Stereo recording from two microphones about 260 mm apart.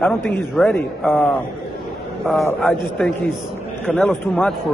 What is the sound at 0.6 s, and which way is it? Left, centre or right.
A man's voice, centre.